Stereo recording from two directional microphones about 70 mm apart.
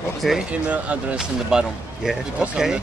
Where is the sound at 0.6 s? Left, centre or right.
Centre.